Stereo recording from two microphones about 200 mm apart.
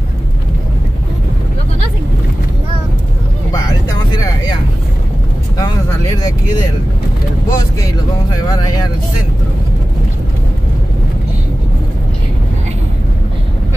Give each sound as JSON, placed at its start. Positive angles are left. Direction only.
{"t": 7.4, "sound": "vehicle", "side_deg": 20}